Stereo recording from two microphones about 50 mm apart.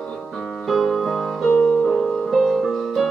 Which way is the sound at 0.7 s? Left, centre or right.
Centre.